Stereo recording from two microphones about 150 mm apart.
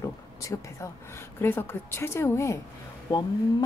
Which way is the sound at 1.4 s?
15° left (ahead or behind).